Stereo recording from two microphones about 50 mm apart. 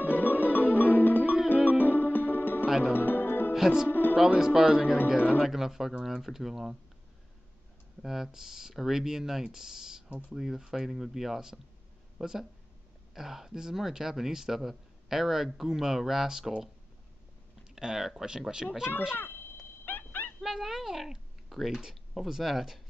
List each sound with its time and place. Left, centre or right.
0.0 s music: left
3.5 s speech: centre
3.9 s music: left
4.4 s speech: centre
5.4 s speech: centre
8.0 s speech: centre
17.6 s speech: centre
18.6 s speech: centre
19.1 s a sound: left
19.8 s dog: left
20.3 s speech: centre